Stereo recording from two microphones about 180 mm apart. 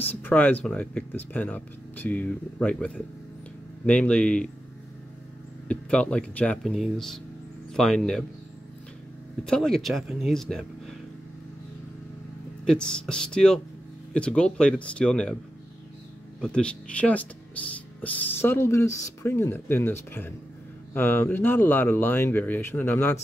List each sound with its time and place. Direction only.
0.1 s speech: 10° left (ahead or behind)
5.7 s speech: 5° left (ahead or behind)
9.4 s speech: 5° left (ahead or behind)
12.6 s speech: 5° left (ahead or behind)
16.3 s speech: 5° left (ahead or behind)